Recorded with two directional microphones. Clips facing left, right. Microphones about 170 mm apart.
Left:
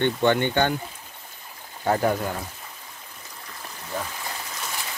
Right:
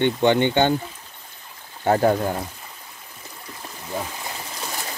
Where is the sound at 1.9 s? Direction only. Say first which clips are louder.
Right 4 dB; 25° right (ahead or behind).